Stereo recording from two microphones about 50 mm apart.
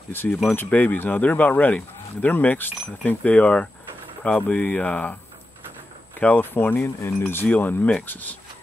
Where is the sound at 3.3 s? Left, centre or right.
Left.